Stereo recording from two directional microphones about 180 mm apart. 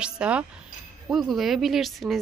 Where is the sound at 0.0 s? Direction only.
5° right (ahead or behind).